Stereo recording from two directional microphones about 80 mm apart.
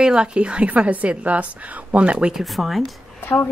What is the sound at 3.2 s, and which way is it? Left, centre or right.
Speech, left.